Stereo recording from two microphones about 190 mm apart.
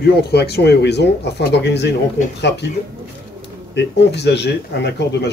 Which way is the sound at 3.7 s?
65° left (ahead or behind).